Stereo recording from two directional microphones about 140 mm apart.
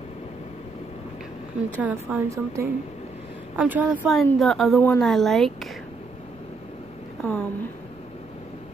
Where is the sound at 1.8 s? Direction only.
10° right (ahead or behind).